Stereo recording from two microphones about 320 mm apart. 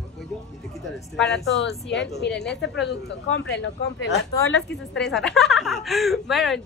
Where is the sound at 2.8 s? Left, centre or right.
Left.